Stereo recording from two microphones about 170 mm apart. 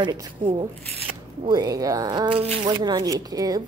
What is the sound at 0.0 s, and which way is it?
Speech, 30° right (ahead or behind).